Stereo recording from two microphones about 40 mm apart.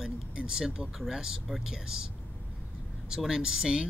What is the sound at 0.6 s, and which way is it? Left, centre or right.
Speech, centre.